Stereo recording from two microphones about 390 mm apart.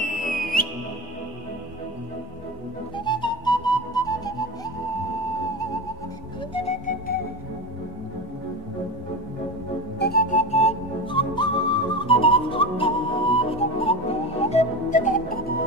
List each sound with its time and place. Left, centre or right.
0.0 s music: left
3.1 s music: centre
6.5 s music: centre
9.9 s music: left